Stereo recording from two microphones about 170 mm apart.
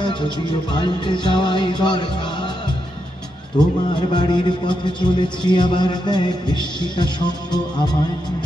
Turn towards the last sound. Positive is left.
turn(degrees=25)  # may be behind; listen again after turning